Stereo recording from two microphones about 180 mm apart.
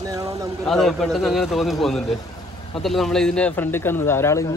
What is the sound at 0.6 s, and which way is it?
A man's voice, centre (ahead or behind).